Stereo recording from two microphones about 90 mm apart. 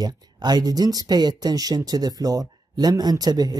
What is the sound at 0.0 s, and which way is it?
Speech, 50° right (ahead or behind).